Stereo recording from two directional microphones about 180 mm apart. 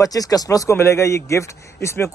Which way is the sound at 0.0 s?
20° left (ahead or behind).